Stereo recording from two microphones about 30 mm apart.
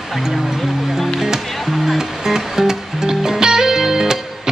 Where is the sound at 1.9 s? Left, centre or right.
Centre.